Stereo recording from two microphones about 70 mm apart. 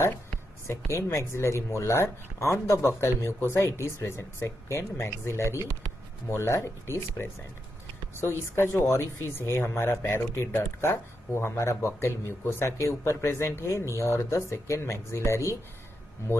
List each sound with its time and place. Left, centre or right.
0.7 s speech: left